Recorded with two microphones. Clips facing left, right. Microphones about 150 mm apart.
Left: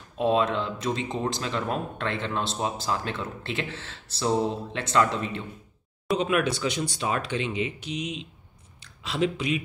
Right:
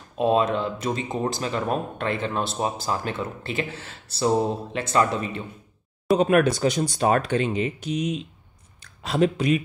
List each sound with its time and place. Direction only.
0.2 s speech: 15° right (ahead or behind)
6.1 s speech: 45° right (ahead or behind)